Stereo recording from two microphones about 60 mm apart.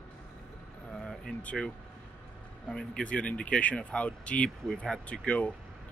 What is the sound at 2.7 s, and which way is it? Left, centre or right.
Speech, centre.